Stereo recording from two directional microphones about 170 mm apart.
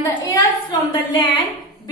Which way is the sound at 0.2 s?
25° left (ahead or behind).